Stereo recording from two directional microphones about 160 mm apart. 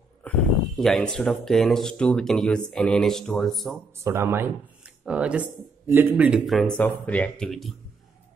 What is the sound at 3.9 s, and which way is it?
Speech, 15° right (ahead or behind).